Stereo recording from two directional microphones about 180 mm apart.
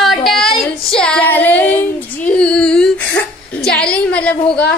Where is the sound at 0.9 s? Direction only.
5° left (ahead or behind).